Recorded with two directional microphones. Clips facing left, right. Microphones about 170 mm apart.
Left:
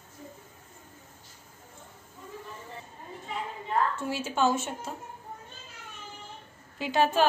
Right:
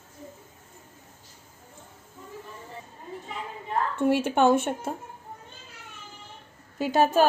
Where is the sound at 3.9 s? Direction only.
60° right (ahead or behind).